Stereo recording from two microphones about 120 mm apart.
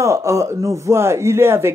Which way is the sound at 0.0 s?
25° right (ahead or behind).